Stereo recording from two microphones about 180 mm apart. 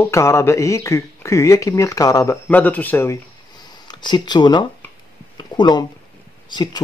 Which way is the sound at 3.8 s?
25° left (ahead or behind).